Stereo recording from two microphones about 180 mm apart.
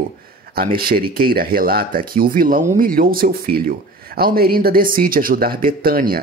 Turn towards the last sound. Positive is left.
turn(degrees=-55)  # may be behind; listen again after turning